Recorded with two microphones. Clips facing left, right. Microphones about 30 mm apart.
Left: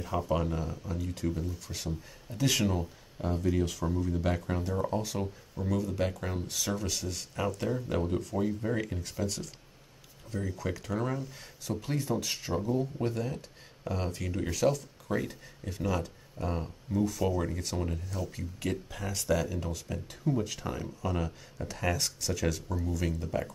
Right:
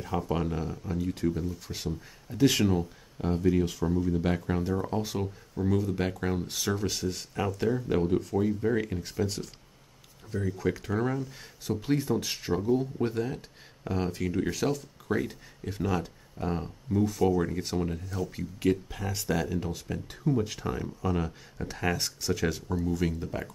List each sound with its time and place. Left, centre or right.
0.0 s speech: centre
11.6 s speech: centre
18.3 s speech: centre